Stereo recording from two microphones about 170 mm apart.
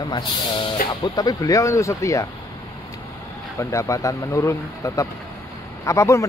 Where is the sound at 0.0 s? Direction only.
25° left (ahead or behind).